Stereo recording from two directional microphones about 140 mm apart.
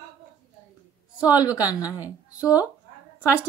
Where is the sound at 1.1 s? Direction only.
10° right (ahead or behind).